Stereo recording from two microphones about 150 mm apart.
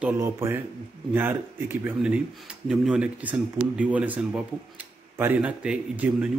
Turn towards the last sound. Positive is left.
turn(degrees=-10)  # may be behind; listen again after turning